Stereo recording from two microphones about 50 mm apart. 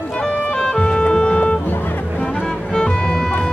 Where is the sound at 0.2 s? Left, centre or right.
Centre.